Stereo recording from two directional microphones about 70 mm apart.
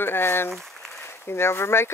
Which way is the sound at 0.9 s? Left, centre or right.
Left.